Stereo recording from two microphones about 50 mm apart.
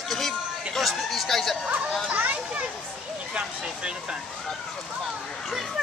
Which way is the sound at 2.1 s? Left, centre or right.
Right.